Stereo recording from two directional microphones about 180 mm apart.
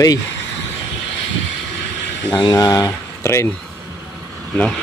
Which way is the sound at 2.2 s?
20° left (ahead or behind).